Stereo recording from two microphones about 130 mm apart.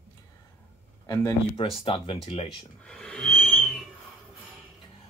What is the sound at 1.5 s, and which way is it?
Speech, 45° left (ahead or behind).